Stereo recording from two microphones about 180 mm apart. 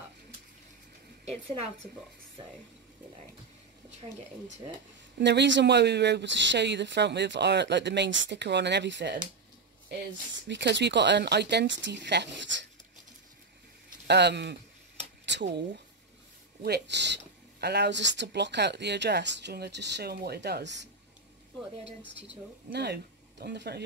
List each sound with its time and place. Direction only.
1.2 s a woman's voice: 35° right (ahead or behind)
5.2 s speech: 75° right (ahead or behind)
10.5 s speech: 75° right (ahead or behind)
14.0 s speech: 70° right (ahead or behind)
22.7 s speech: 65° right (ahead or behind)